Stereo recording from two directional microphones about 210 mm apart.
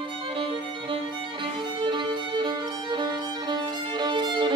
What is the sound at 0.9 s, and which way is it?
Music, 25° right (ahead or behind).